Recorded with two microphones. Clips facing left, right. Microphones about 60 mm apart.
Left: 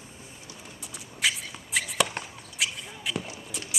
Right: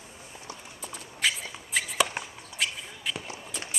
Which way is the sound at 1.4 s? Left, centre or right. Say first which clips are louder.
Even; centre.